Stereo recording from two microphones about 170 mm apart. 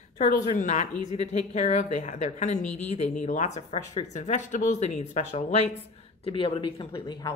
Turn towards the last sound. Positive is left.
turn(degrees=25)  # may be behind; listen again after turning